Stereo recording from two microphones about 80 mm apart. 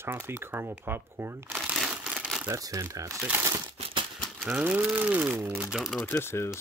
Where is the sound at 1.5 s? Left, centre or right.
Centre.